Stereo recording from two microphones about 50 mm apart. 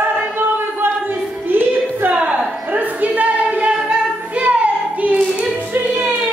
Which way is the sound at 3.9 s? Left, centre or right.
Right.